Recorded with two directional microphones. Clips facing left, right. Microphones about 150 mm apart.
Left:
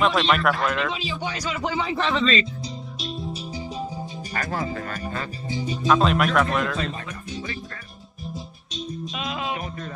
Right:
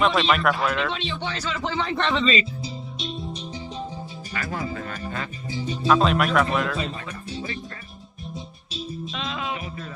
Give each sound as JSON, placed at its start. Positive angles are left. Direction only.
{"t": 0.0, "sound": "a man's voice", "side_deg": 0}
{"t": 3.0, "sound": "music", "side_deg": 0}
{"t": 4.3, "sound": "music", "side_deg": 45}
{"t": 5.5, "sound": "speech", "side_deg": 15}
{"t": 5.9, "sound": "a man's voice", "side_deg": 0}
{"t": 8.7, "sound": "music", "side_deg": -5}